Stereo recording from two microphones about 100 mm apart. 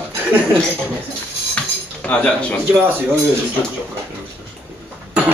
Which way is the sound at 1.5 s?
15° left (ahead or behind).